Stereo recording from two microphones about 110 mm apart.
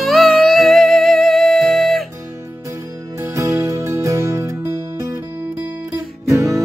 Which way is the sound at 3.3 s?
25° right (ahead or behind).